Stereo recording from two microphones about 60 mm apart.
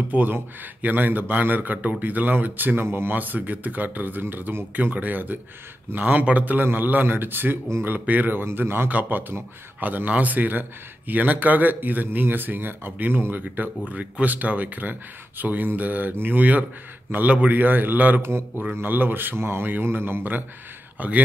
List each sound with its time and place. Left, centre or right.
0.1 s a man's voice: right
3.2 s a man's voice: right
8.5 s a man's voice: right